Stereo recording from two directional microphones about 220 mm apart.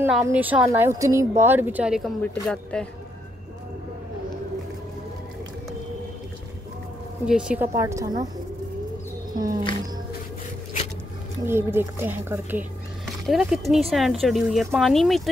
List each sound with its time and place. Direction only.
0.0 s a woman's voice: 10° right (ahead or behind)
7.2 s a woman's voice: 5° right (ahead or behind)
9.3 s music: 15° right (ahead or behind)
11.4 s speech: 10° right (ahead or behind)